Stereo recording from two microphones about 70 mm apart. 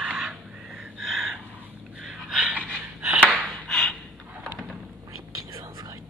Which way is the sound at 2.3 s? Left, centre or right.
Centre.